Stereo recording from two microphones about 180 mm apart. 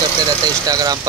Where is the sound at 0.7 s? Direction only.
20° right (ahead or behind).